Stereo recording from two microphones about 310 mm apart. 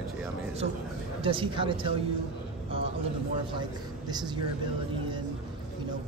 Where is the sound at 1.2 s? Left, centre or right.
Centre.